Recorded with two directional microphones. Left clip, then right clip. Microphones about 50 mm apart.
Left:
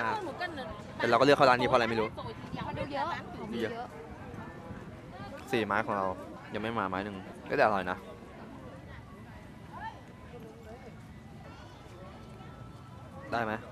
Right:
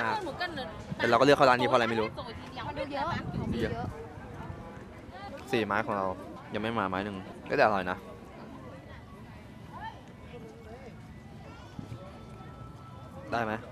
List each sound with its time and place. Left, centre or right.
0.2 s a sound: right
1.0 s a man's voice: centre
1.9 s speech: right
2.1 s a sound: right
2.8 s a man's voice: centre
5.3 s speech: centre
6.5 s a man's voice: centre
13.3 s speech: centre